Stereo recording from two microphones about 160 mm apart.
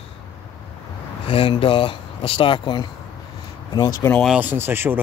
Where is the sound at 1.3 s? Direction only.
35° left (ahead or behind).